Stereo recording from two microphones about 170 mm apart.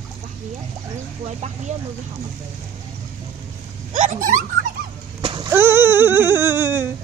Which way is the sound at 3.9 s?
50° right (ahead or behind).